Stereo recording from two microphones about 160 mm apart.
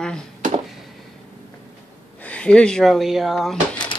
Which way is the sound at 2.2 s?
5° left (ahead or behind).